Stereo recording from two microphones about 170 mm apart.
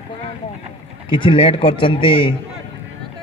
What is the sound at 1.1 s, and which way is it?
Speech, 30° left (ahead or behind).